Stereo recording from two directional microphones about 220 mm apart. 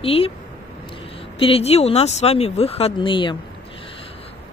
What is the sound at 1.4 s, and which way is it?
Speech, 25° left (ahead or behind).